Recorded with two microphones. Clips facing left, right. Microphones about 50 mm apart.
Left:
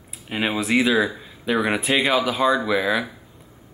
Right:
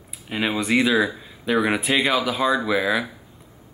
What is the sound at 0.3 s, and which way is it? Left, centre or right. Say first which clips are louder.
Speech: even; centre.